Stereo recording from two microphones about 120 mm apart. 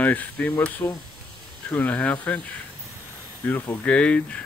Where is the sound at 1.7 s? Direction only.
10° left (ahead or behind).